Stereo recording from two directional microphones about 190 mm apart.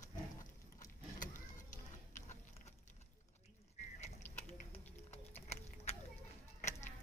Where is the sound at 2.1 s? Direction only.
40° left (ahead or behind).